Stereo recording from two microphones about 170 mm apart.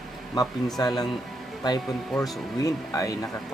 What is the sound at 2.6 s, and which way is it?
Speech, 20° left (ahead or behind).